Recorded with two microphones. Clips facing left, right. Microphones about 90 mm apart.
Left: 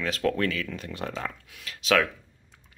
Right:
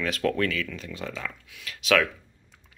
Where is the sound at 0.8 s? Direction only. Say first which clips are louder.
Left 2 dB; 50° left (ahead or behind).